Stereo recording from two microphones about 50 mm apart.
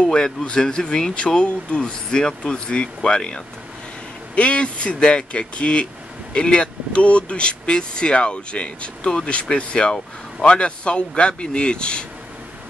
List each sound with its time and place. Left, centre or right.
0.0 s speech: centre